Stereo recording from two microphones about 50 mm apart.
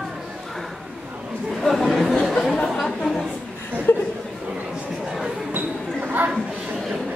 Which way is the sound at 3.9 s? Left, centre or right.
Left.